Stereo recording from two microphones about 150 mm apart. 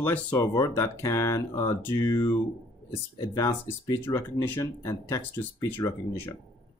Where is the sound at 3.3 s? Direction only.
20° left (ahead or behind).